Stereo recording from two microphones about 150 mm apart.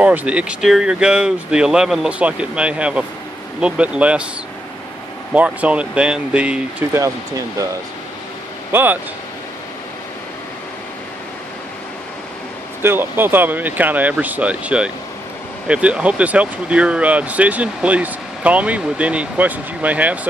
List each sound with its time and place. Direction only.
0.0 s speech: 10° right (ahead or behind)
5.3 s speech: 10° right (ahead or behind)
8.7 s speech: 15° right (ahead or behind)
12.8 s speech: 15° right (ahead or behind)